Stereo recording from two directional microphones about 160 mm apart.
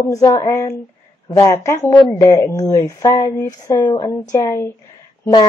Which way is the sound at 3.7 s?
25° left (ahead or behind).